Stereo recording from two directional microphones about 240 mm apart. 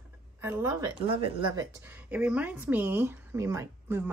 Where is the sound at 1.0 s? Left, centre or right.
Right.